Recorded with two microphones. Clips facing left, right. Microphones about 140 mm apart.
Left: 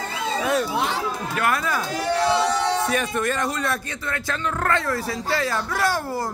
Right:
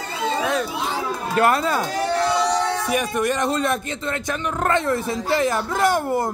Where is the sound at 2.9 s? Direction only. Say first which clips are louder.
Right 2 dB; 15° right (ahead or behind).